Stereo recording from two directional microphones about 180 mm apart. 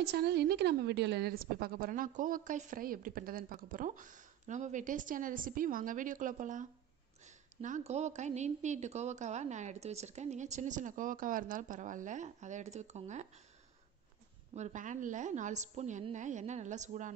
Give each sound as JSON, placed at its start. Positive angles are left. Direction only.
{"t": 0.0, "sound": "a woman's voice", "side_deg": -65}
{"t": 14.5, "sound": "a woman's voice", "side_deg": -40}